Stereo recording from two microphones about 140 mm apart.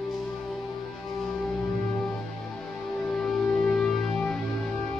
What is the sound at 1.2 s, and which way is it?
Music, 5° left (ahead or behind).